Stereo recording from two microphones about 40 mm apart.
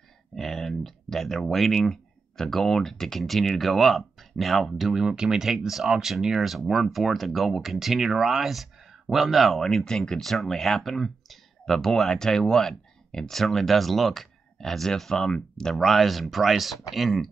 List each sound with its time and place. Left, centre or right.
0.4 s speech: centre
5.0 s speech: centre
9.8 s speech: centre
10.2 s speech: centre
15.7 s speech: centre